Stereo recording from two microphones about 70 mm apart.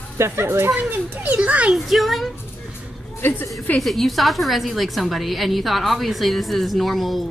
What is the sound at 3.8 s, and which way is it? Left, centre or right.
A woman's voice, centre.